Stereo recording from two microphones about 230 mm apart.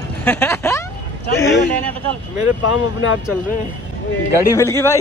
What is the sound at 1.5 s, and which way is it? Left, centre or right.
Speech, centre.